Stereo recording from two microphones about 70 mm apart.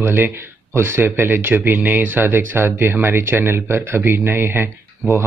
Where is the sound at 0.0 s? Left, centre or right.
Right.